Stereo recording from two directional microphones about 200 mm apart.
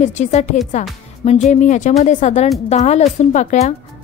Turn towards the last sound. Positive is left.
turn(degrees=35)  # may be behind; listen again after turning